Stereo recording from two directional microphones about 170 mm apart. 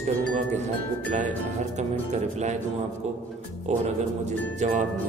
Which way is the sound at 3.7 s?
40° right (ahead or behind).